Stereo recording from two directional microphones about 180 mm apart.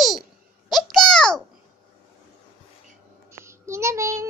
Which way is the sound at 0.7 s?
Centre (ahead or behind).